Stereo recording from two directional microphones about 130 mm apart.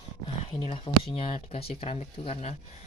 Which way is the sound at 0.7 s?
45° left (ahead or behind).